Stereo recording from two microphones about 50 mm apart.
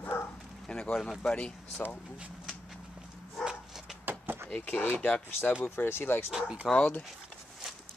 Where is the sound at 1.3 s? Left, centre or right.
Left.